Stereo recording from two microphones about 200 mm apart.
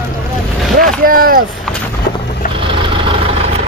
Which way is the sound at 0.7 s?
45° right (ahead or behind).